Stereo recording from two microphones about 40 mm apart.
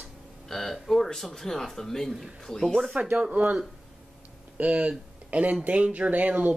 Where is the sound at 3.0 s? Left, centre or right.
Right.